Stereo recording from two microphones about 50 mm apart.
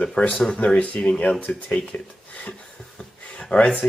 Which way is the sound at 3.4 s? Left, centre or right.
Centre.